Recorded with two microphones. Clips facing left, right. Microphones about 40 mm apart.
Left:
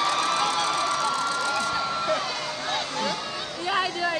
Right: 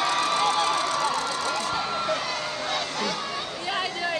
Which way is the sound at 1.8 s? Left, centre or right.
Centre.